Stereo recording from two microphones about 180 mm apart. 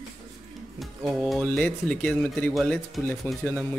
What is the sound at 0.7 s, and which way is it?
Speech, centre (ahead or behind).